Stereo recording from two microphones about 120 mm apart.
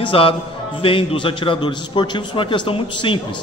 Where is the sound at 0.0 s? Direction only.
45° left (ahead or behind).